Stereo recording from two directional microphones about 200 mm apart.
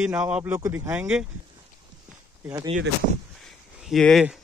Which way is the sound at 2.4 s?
20° right (ahead or behind).